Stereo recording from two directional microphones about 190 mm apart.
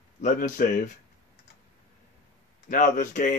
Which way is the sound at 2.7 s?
45° left (ahead or behind).